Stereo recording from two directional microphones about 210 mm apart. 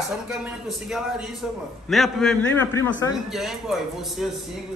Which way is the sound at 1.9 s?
Centre (ahead or behind).